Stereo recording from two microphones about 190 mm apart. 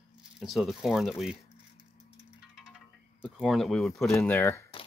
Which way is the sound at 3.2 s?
Centre (ahead or behind).